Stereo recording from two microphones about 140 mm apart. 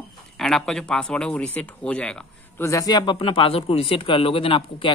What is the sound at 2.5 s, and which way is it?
Speech, 20° left (ahead or behind).